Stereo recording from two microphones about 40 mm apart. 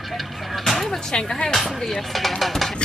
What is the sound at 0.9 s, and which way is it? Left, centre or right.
Speech, centre.